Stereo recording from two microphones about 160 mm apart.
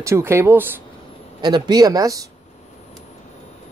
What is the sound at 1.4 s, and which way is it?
Speech, 25° right (ahead or behind).